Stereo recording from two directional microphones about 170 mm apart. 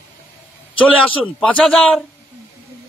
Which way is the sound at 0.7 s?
5° left (ahead or behind).